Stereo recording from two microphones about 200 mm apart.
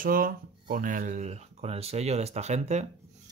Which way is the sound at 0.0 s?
45° right (ahead or behind).